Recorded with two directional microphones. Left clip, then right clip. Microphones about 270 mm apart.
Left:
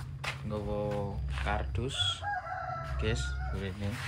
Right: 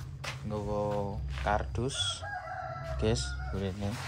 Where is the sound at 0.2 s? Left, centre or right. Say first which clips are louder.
Left 1 dB; centre.